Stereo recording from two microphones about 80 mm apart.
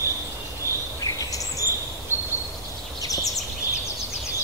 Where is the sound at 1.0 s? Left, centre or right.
Left.